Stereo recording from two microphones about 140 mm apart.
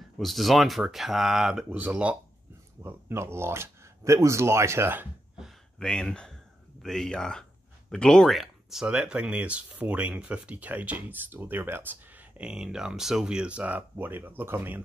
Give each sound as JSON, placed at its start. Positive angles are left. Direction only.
{"t": 0.2, "sound": "speech", "side_deg": 0}
{"t": 5.4, "sound": "a sound", "side_deg": 5}
{"t": 6.8, "sound": "speech", "side_deg": 5}